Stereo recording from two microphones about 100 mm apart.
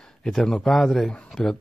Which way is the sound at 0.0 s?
5° left (ahead or behind).